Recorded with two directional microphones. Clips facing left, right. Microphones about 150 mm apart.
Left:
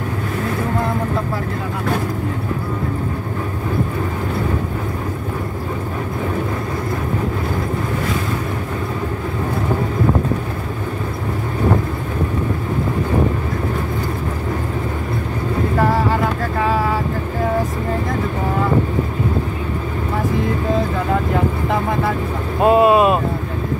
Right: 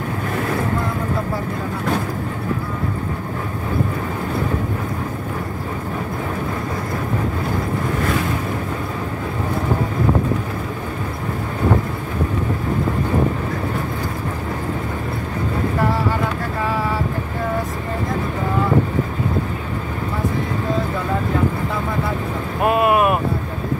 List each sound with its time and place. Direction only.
22.6 s vehicle: 25° left (ahead or behind)